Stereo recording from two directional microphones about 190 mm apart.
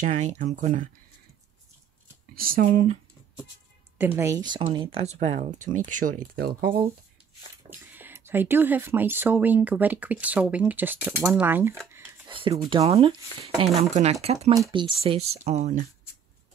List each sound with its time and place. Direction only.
0.0 s speech: 40° right (ahead or behind)
2.3 s speech: 50° right (ahead or behind)
2.6 s speech: 35° right (ahead or behind)
4.0 s speech: 10° right (ahead or behind); by 6.7 s 50° right (ahead or behind)
7.7 s speech: 10° right (ahead or behind)
12.3 s speech: 25° right (ahead or behind)
14.5 s speech: 20° right (ahead or behind)